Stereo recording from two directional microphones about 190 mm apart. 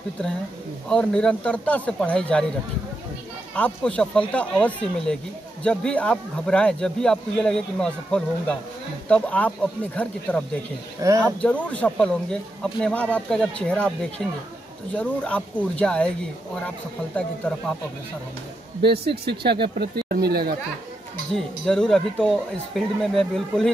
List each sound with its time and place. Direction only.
0.8 s a man's voice: 5° left (ahead or behind)
3.5 s a man's voice: 5° left (ahead or behind)
14.2 s a man's voice: 5° right (ahead or behind)
15.0 s a man's voice: 5° left (ahead or behind)
18.8 s speech: 60° right (ahead or behind)
21.3 s a man's voice: 5° left (ahead or behind)